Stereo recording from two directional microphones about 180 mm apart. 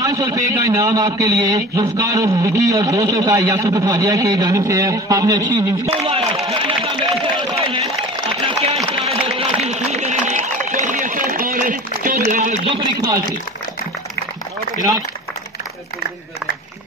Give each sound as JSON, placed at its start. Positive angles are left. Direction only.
{"t": 0.0, "sound": "a man's voice", "side_deg": -20}
{"t": 5.9, "sound": "speech", "side_deg": -30}
{"t": 6.4, "sound": "a sound", "side_deg": -30}
{"t": 8.9, "sound": "run", "side_deg": -30}
{"t": 12.6, "sound": "speech", "side_deg": -30}